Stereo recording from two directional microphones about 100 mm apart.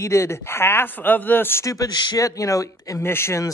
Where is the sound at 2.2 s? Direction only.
35° left (ahead or behind).